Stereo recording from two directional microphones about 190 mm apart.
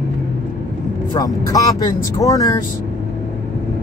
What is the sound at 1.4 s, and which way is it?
Speech, 20° left (ahead or behind).